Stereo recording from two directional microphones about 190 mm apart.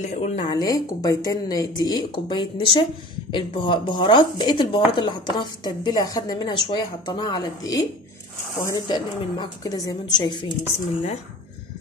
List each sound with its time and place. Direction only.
0.0 s a woman's voice: 40° left (ahead or behind)
0.6 s speech: 20° left (ahead or behind)